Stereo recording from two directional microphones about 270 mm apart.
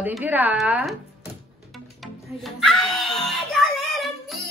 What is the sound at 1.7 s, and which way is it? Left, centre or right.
Music, centre.